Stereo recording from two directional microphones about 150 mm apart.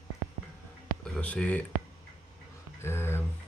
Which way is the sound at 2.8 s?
15° left (ahead or behind).